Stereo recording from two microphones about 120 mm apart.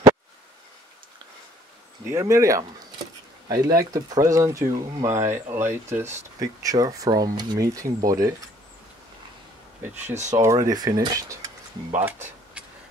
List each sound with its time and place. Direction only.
2.0 s speech: 25° right (ahead or behind)
10.1 s speech: 75° right (ahead or behind)
10.4 s speech: 25° right (ahead or behind)